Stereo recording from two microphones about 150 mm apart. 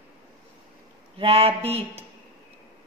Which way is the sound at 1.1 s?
40° right (ahead or behind).